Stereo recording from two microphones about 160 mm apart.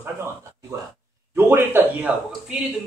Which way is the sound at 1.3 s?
15° right (ahead or behind).